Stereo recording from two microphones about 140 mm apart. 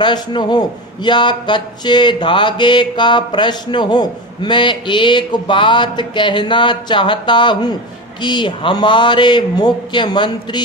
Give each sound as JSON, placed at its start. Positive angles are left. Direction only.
{"t": 0.0, "sound": "a man's voice", "side_deg": 30}